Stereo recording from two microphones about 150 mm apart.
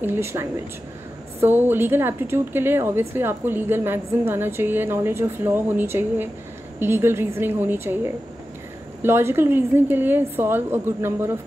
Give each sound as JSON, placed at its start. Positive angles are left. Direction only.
{"t": 0.0, "sound": "a woman's voice", "side_deg": -15}